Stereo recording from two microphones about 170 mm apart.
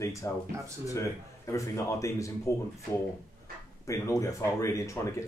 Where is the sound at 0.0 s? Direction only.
20° left (ahead or behind).